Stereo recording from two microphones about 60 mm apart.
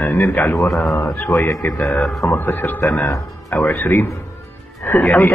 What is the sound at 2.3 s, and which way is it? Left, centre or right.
Speech, left.